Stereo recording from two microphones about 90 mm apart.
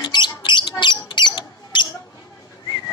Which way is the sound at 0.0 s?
55° left (ahead or behind).